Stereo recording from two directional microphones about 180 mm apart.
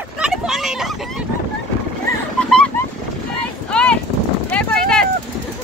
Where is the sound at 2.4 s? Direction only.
5° left (ahead or behind).